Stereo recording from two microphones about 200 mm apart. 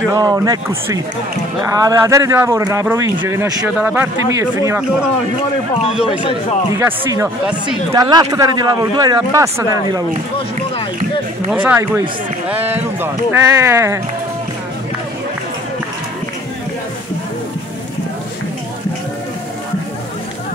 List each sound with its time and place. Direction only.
0.1 s speech: 20° right (ahead or behind)
6.8 s speech: 15° right (ahead or behind)
7.9 s speech: 20° right (ahead or behind)
11.6 s speech: 10° right (ahead or behind)